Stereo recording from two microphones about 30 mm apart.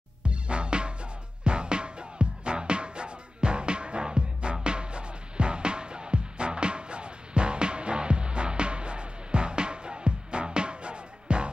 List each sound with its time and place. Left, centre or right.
0.2 s music: right